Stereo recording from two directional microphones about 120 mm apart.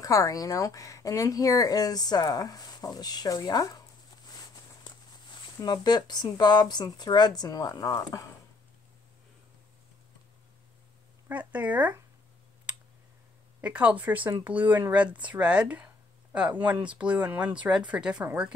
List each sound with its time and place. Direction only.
0.0 s speech: 30° left (ahead or behind)
5.3 s speech: 35° left (ahead or behind)
11.2 s speech: 15° right (ahead or behind)
12.7 s a sound: 10° right (ahead or behind)
13.6 s speech: 10° right (ahead or behind)